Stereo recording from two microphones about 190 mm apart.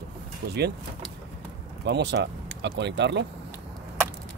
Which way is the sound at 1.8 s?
65° right (ahead or behind).